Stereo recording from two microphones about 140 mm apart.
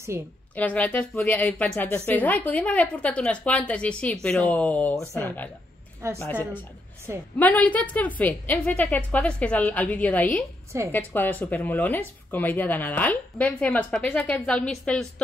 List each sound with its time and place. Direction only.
0.1 s a woman's voice: 20° right (ahead or behind)
0.6 s speech: 10° left (ahead or behind)